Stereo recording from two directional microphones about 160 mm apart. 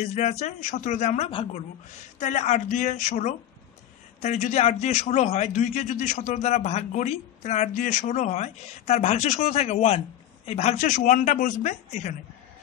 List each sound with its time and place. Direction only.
0.1 s a man's voice: 45° left (ahead or behind)